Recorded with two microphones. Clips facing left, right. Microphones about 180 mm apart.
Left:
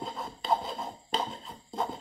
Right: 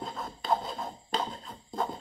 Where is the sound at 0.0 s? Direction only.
Centre (ahead or behind).